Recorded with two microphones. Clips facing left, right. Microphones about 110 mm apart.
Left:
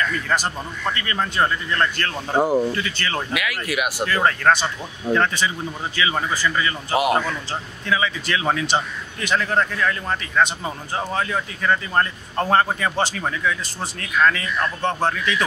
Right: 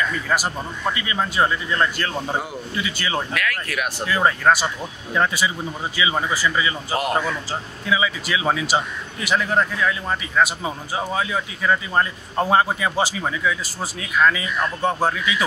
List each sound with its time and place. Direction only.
0.0 s a man's voice: 10° right (ahead or behind)
2.3 s speech: 45° left (ahead or behind)
2.7 s a man's voice: 15° right (ahead or behind)
3.3 s speech: 10° left (ahead or behind)
4.1 s a man's voice: 10° right (ahead or behind)